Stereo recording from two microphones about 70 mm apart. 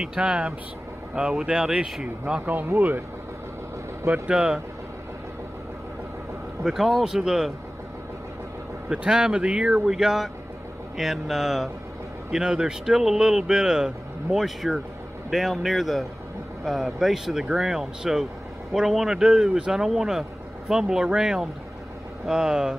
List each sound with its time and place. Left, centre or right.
0.0 s a man's voice: centre
2.4 s speech: right
4.1 s a man's voice: centre
6.6 s a man's voice: centre
8.8 s a man's voice: centre